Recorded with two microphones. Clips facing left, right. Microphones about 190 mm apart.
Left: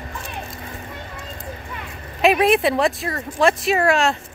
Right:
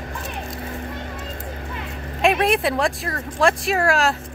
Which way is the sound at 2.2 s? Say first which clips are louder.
Left 3 dB; centre (ahead or behind).